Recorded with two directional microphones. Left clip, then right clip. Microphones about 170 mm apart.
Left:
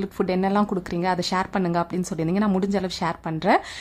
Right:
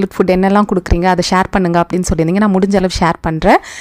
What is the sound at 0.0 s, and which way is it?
A woman's voice, 45° right (ahead or behind).